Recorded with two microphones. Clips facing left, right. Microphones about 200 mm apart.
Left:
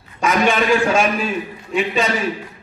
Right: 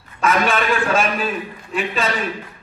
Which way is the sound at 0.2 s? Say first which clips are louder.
Left 2 dB; centre (ahead or behind).